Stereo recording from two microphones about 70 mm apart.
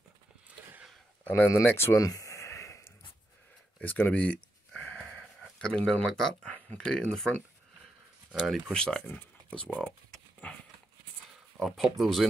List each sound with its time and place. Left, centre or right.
1.2 s speech: left
2.0 s a sound: left
3.8 s a sound: left; by 5.2 s centre
5.6 s speech: centre
8.7 s speech: centre
11.6 s speech: centre